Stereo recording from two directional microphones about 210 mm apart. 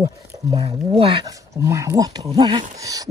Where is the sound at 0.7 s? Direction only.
25° right (ahead or behind).